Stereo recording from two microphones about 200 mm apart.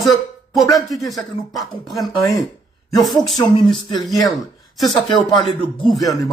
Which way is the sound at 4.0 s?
Centre (ahead or behind).